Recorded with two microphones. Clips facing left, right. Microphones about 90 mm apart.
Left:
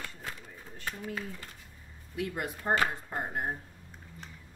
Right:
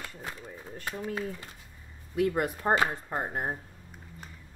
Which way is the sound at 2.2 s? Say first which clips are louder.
Right 8 dB; 50° right (ahead or behind).